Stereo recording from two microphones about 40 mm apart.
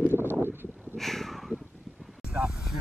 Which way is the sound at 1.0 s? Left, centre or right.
Centre.